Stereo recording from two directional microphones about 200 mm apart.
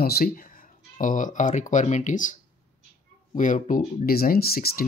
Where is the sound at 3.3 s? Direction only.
40° left (ahead or behind).